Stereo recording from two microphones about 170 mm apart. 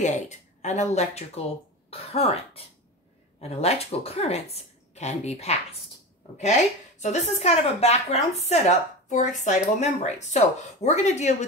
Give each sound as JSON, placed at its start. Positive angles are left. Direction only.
{"t": 0.0, "sound": "a woman's voice", "side_deg": 45}